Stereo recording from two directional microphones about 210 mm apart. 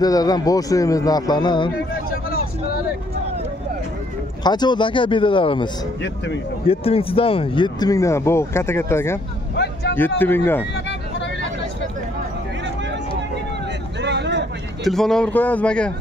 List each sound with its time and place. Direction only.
0.0 s speech: 20° left (ahead or behind)
4.4 s speech: 20° left (ahead or behind)
6.7 s speech: 25° left (ahead or behind); by 10.6 s 10° left (ahead or behind)
14.0 s vehicle: 55° right (ahead or behind)
14.9 s a man's voice: centre (ahead or behind)